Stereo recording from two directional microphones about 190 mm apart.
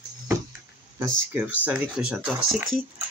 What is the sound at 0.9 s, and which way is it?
Speech, 10° right (ahead or behind).